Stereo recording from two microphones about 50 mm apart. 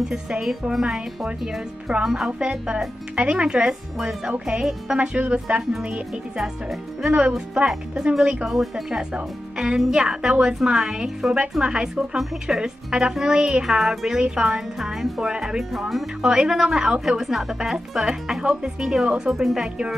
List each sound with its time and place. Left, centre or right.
0.0 s speech: centre
3.2 s speech: right
4.9 s speech: right
6.3 s speech: centre
7.1 s speech: right
8.5 s speech: centre
8.9 s speech: centre
17.2 s speech: centre